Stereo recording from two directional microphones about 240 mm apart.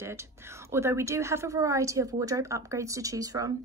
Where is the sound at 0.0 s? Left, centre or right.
Centre.